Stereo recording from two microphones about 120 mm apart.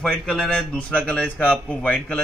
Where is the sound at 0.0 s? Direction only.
5° left (ahead or behind).